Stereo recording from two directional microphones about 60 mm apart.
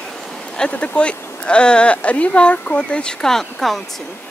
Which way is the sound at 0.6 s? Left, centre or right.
Centre.